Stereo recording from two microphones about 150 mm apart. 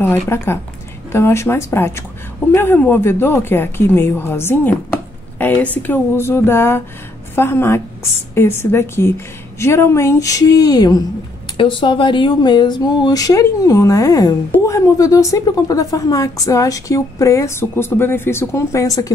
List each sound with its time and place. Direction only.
0.0 s a woman's voice: 15° left (ahead or behind)